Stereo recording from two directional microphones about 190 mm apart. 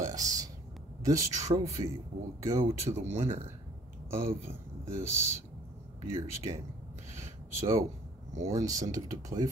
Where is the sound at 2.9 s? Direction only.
30° right (ahead or behind).